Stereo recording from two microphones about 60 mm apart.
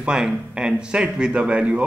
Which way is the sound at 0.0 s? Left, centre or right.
Centre.